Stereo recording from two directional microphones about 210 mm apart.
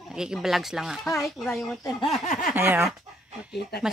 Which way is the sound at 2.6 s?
10° right (ahead or behind).